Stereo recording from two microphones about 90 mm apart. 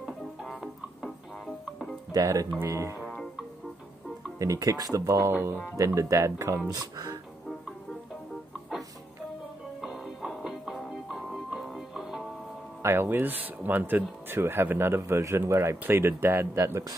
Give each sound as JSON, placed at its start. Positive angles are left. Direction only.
{"t": 0.0, "sound": "music", "side_deg": -5}
{"t": 2.1, "sound": "speech", "side_deg": -40}
{"t": 4.4, "sound": "speech", "side_deg": -40}
{"t": 5.3, "sound": "speech", "side_deg": -30}
{"t": 9.8, "sound": "music", "side_deg": -5}
{"t": 12.8, "sound": "speech", "side_deg": -25}